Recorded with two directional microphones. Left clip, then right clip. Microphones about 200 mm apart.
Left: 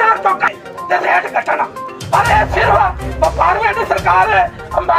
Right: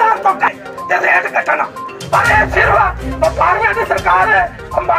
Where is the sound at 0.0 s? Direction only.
45° right (ahead or behind).